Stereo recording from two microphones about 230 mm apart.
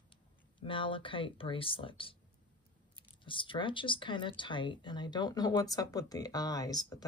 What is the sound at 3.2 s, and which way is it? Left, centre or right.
Speech, left.